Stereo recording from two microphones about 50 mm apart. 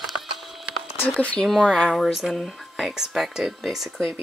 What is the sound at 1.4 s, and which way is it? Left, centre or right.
Speech, centre.